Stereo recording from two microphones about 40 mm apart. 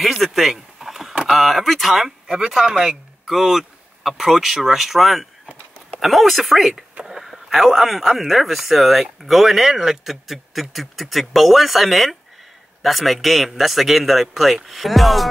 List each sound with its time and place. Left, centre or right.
0.0 s power windows: centre
1.1 s speech: centre
2.2 s speech: right
2.8 s speech: centre